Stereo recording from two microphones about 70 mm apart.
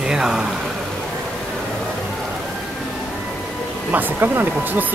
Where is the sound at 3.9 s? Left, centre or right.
Right.